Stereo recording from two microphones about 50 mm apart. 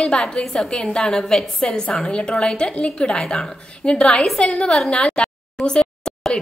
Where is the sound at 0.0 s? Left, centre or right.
Centre.